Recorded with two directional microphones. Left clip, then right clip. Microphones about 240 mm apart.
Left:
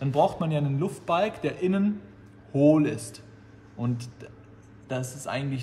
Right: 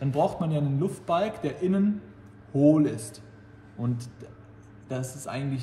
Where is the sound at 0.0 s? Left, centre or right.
Centre.